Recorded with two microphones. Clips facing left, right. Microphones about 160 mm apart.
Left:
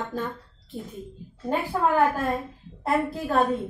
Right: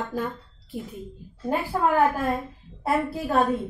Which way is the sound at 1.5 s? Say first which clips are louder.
Even; 5° right (ahead or behind).